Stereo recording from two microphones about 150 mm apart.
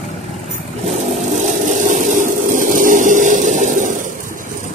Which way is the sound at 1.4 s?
55° right (ahead or behind).